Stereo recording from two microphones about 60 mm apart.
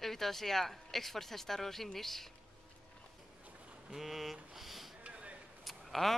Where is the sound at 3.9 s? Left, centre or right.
Centre.